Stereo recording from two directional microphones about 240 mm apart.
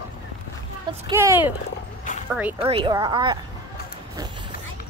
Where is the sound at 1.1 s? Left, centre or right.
Centre.